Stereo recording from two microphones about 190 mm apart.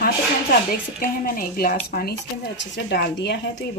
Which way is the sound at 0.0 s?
50° left (ahead or behind).